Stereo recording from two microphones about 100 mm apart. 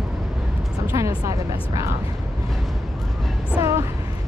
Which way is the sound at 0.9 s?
35° right (ahead or behind).